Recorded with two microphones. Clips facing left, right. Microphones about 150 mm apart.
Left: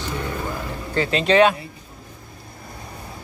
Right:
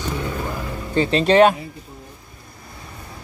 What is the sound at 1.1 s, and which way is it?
Speech, 45° right (ahead or behind).